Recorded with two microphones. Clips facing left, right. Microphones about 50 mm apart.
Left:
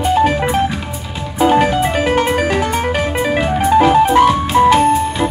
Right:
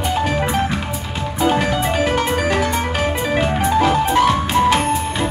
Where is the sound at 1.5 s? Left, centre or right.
Left.